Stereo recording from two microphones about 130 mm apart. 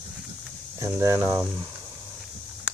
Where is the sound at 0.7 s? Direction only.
20° right (ahead or behind).